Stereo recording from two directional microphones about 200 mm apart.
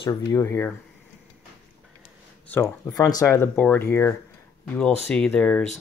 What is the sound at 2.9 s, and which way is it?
Speech, 15° left (ahead or behind).